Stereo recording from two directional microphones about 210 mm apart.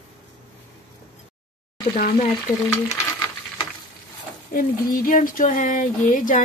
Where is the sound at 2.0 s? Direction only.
40° left (ahead or behind).